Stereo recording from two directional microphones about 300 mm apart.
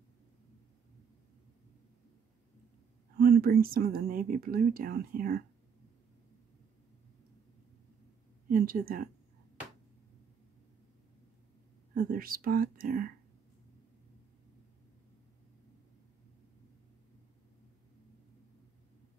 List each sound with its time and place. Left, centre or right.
3.2 s speech: right
8.5 s speech: right
11.9 s speech: right